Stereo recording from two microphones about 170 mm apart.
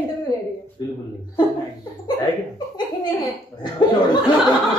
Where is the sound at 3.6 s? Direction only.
25° left (ahead or behind).